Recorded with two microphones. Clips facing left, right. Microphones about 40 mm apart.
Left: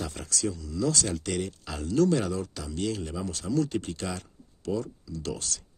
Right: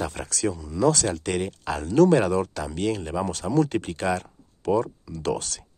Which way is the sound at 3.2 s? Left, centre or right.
Right.